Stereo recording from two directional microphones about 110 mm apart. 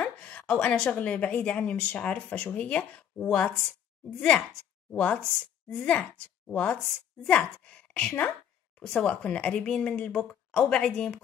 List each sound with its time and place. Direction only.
0.0 s a woman's voice: 10° left (ahead or behind)
4.9 s a woman's voice: 10° left (ahead or behind)